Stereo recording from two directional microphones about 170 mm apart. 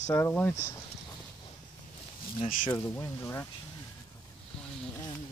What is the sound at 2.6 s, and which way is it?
Speech, 15° left (ahead or behind).